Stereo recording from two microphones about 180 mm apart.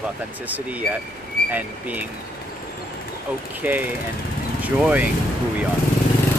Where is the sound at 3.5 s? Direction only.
10° right (ahead or behind).